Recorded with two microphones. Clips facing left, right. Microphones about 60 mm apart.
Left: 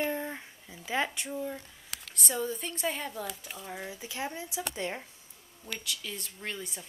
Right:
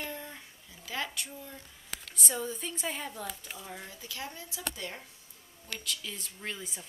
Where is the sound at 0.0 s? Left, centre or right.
Left.